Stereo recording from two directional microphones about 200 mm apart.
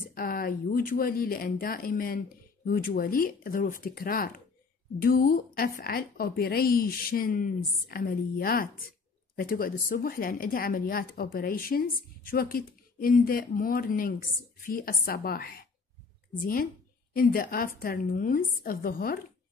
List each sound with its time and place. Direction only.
0.1 s speech: 45° left (ahead or behind)
17.1 s speech: 45° left (ahead or behind)